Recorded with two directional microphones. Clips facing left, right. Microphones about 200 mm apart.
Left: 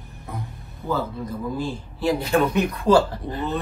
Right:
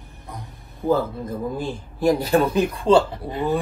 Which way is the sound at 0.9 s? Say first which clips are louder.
Right 5 dB; 50° right (ahead or behind).